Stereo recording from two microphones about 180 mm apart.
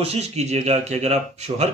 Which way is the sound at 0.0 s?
35° right (ahead or behind).